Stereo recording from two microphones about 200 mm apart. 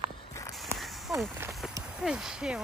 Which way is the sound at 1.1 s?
Centre (ahead or behind).